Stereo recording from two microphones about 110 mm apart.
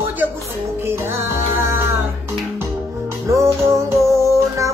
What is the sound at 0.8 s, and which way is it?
Music, 20° right (ahead or behind).